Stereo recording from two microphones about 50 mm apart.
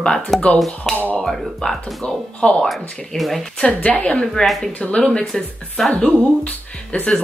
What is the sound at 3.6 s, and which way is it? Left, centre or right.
Speech, left.